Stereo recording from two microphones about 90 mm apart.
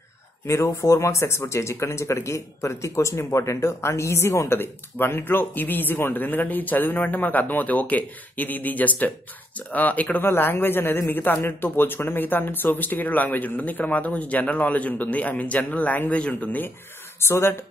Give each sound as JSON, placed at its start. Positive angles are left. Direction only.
{"t": 0.7, "sound": "speech", "side_deg": 35}
{"t": 17.2, "sound": "speech", "side_deg": 30}